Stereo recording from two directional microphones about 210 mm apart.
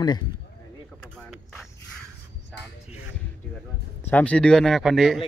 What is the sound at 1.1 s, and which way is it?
Vehicle, centre (ahead or behind).